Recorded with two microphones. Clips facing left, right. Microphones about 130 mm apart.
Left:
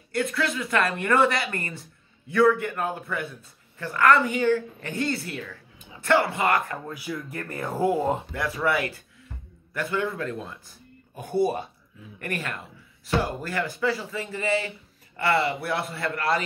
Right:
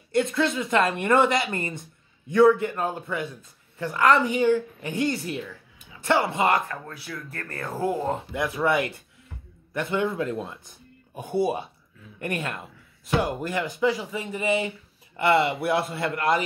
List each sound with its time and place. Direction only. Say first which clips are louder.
0.1 s speech: right 3 dB; 25° right (ahead or behind)
6.7 s speech: left 3 dB; 10° left (ahead or behind)
8.3 s speech: right 2 dB; 20° right (ahead or behind)
11.1 s speech: even; 10° right (ahead or behind)
12.2 s speech: right 2 dB; 25° right (ahead or behind)